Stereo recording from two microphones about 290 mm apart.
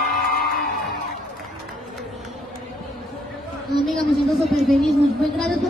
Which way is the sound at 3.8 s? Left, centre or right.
Centre.